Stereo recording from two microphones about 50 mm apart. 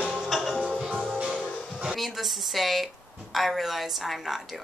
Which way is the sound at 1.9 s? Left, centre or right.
Centre.